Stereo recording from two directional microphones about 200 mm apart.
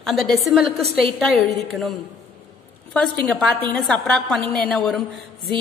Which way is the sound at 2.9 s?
5° left (ahead or behind).